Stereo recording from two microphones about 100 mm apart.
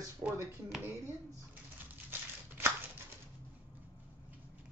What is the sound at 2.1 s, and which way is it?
Walk, 20° right (ahead or behind).